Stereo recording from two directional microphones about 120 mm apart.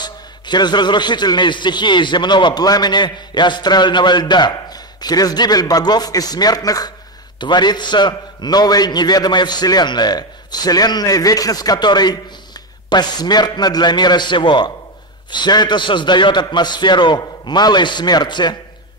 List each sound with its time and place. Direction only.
0.0 s a man's voice: 35° left (ahead or behind)